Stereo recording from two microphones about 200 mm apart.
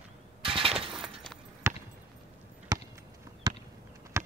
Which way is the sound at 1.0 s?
Centre (ahead or behind).